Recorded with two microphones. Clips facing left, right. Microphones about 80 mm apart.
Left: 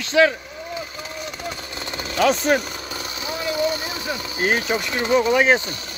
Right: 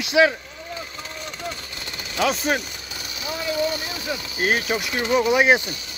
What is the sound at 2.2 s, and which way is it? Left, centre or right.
Speech, centre.